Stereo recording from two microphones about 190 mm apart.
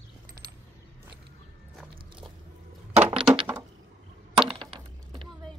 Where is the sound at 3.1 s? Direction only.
25° right (ahead or behind).